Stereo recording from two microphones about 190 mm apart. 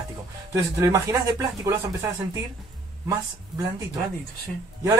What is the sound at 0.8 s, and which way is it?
Speech, 15° right (ahead or behind).